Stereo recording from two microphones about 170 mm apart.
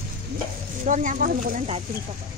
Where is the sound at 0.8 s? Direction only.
50° right (ahead or behind).